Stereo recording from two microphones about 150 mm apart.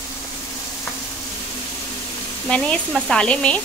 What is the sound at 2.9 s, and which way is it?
Speech, 5° left (ahead or behind).